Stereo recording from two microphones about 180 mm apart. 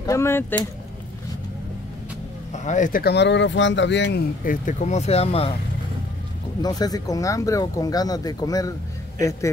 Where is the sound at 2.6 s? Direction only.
45° left (ahead or behind); by 4.2 s 75° left (ahead or behind).